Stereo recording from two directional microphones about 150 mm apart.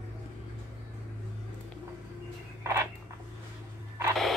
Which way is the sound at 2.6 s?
20° right (ahead or behind).